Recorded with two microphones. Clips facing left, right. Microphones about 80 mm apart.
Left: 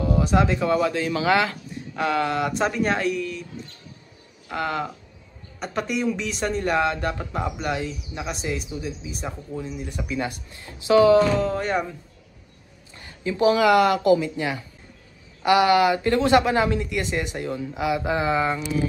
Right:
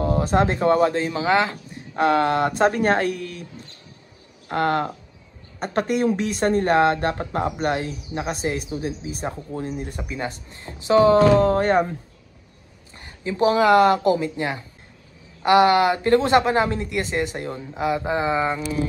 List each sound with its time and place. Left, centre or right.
0.0 s speech: right
1.0 s speech: right
2.0 s speech: right
4.5 s speech: right
11.2 s speech: right
12.9 s speech: right